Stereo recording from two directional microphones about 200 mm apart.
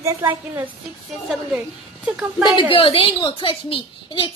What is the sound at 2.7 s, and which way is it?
A woman's voice, 25° left (ahead or behind).